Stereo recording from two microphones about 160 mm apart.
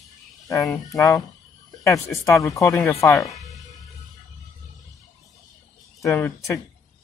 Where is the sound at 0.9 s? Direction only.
20° left (ahead or behind).